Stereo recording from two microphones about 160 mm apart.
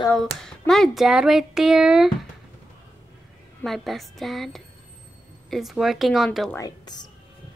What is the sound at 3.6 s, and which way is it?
Speech, centre (ahead or behind).